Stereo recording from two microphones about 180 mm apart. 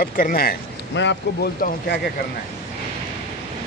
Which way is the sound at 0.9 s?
85° left.